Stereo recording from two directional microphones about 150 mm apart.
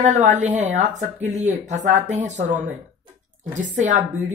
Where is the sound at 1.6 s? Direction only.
50° right (ahead or behind).